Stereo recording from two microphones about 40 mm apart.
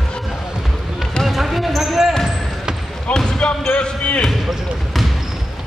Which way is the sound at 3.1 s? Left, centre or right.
Left.